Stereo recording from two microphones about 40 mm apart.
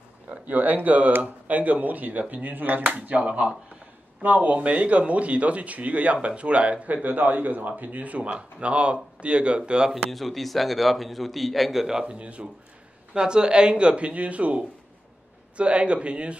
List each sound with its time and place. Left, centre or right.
0.3 s a man's voice: right; by 9.9 s centre
10.1 s a man's voice: centre
11.8 s a man's voice: centre
12.2 s a man's voice: right